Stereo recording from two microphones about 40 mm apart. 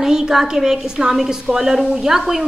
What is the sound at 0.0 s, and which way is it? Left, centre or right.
Speech, centre.